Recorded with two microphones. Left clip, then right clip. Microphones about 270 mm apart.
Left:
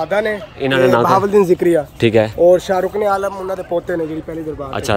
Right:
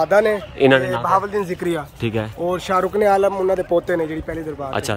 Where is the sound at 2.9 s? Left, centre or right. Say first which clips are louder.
Right 1 dB; right.